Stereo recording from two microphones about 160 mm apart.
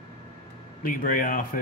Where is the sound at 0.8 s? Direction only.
60° left (ahead or behind).